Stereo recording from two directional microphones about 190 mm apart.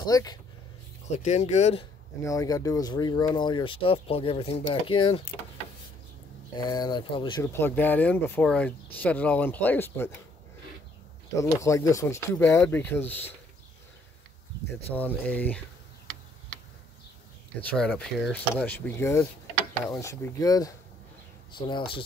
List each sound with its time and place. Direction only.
0.0 s speech: 20° left (ahead or behind)
1.1 s speech: 35° left (ahead or behind)
2.2 s speech: 20° left (ahead or behind)
6.5 s speech: 20° left (ahead or behind)
7.5 s speech: 10° left (ahead or behind)
11.3 s speech: 15° left (ahead or behind)
15.0 s speech: 10° left (ahead or behind)
17.6 s speech: 5° left (ahead or behind); by 22.0 s 25° left (ahead or behind)